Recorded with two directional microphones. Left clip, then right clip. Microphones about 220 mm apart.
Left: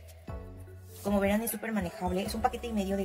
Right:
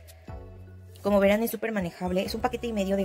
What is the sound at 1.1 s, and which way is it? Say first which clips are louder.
Speech: right 7 dB; 40° right (ahead or behind).